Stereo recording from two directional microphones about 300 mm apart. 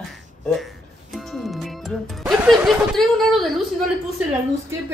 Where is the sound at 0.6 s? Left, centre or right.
Centre.